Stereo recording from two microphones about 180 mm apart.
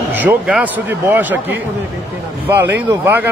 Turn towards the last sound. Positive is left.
turn(degrees=-10)  # may be behind; listen again after turning